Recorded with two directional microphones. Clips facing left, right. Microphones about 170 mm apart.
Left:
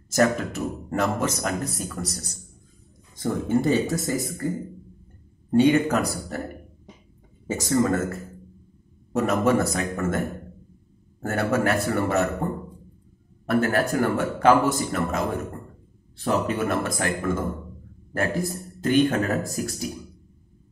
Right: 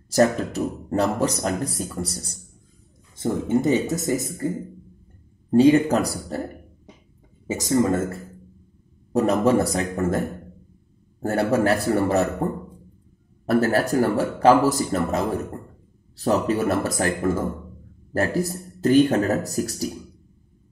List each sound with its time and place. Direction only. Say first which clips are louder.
0.1 s speech: right 2 dB; 35° right (ahead or behind)
5.5 s speech: right 3 dB; 30° right (ahead or behind)
7.4 s speech: right 2 dB; 20° right (ahead or behind)
9.1 s speech: right 3 dB; 35° right (ahead or behind)
13.5 s speech: right 2 dB; 35° right (ahead or behind)